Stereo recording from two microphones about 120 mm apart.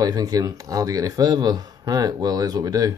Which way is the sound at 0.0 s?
30° right (ahead or behind).